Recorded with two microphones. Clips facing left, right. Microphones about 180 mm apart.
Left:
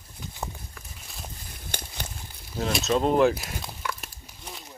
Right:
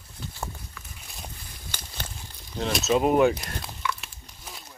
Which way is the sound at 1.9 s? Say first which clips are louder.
Left 1 dB; 15° left (ahead or behind).